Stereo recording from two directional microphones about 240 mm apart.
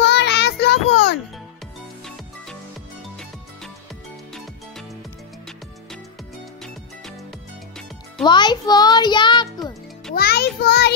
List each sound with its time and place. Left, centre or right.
0.0 s child singing: left
8.2 s a child's voice: centre
10.1 s a child's voice: left